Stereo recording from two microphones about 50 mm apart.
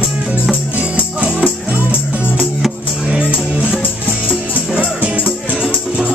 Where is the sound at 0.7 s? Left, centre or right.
Right.